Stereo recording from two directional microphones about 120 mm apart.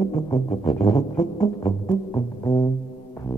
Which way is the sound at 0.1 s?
45° left (ahead or behind).